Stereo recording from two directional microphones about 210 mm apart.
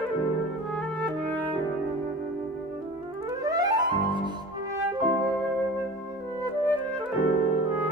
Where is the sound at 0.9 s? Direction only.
5° left (ahead or behind).